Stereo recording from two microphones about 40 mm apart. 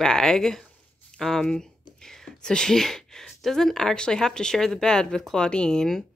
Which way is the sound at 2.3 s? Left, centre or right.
Left.